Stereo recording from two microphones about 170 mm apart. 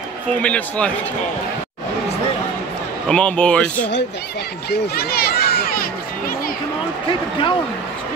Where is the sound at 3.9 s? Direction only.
85° left; by 6.6 s 60° left (ahead or behind).